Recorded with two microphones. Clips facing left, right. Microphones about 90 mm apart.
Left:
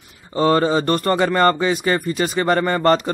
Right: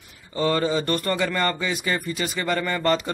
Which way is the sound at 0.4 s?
40° left (ahead or behind).